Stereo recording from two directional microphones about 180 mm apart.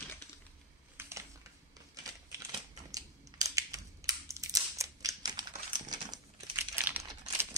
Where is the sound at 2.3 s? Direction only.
20° right (ahead or behind).